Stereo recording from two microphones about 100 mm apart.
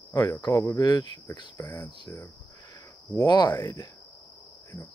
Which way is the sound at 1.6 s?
15° left (ahead or behind).